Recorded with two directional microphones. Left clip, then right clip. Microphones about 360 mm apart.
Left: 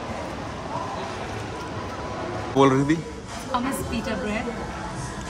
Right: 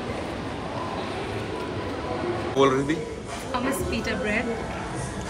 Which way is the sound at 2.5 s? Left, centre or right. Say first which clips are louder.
Left 2 dB; centre.